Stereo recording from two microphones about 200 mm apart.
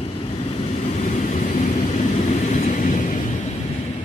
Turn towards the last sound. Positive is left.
turn(degrees=40)  # may be behind; listen again after turning